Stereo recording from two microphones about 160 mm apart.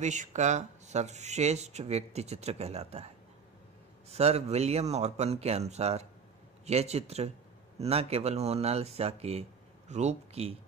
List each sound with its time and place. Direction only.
0.0 s speech: 50° right (ahead or behind)
4.1 s speech: 40° right (ahead or behind)